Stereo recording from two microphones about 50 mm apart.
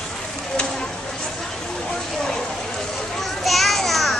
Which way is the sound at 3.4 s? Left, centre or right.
Centre.